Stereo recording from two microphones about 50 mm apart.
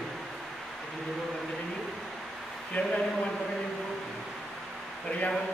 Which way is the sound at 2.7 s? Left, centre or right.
Left.